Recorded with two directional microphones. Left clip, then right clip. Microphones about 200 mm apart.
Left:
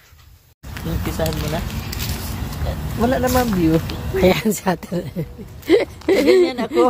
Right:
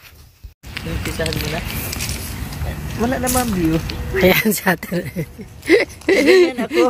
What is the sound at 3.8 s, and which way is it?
Speech, 5° right (ahead or behind).